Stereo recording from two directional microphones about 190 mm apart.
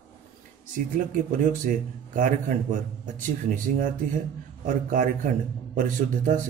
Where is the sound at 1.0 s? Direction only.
45° right (ahead or behind).